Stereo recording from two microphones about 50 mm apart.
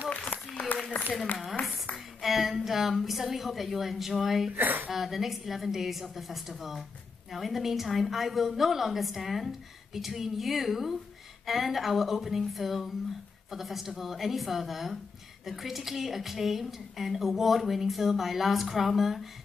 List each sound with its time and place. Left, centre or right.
1.4 s a sound: centre
2.2 s a woman's voice: centre
4.6 s speech: right
4.9 s a woman's voice: centre